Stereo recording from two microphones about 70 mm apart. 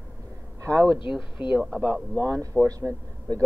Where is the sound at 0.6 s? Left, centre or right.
Right.